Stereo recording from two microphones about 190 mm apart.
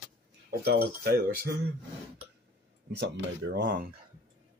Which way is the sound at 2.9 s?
65° right (ahead or behind).